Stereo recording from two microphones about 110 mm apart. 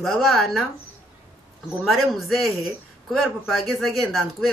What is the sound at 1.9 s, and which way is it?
Speech, centre (ahead or behind).